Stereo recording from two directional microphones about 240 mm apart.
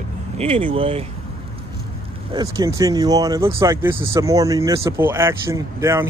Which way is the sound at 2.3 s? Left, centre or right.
Centre.